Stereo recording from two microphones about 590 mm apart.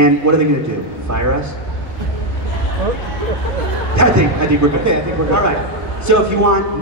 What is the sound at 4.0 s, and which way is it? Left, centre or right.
A man's voice, right.